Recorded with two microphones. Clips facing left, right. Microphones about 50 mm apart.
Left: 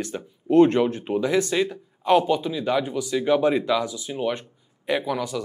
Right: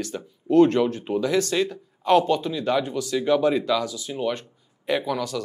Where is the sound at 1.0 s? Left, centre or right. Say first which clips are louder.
Left 1 dB; centre.